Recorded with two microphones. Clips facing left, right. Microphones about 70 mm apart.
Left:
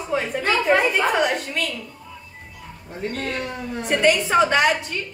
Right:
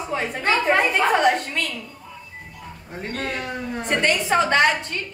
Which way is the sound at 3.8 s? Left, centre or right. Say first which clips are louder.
Left 3 dB; centre.